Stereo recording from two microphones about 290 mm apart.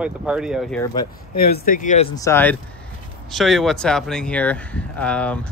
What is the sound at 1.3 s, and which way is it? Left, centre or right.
Speech, left.